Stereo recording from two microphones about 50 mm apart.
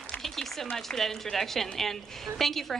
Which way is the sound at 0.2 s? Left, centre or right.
Centre.